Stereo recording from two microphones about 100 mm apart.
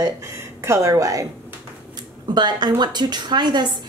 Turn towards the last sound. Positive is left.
turn(degrees=-45)  # may be behind; listen again after turning